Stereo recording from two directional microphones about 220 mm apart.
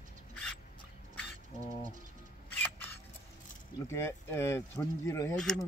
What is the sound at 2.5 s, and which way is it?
Single-lens reflex camera, 10° left (ahead or behind).